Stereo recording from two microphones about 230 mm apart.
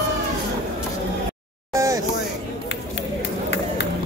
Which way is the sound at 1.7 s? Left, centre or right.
Centre.